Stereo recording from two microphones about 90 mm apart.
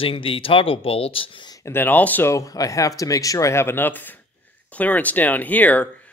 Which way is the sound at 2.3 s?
40° left (ahead or behind).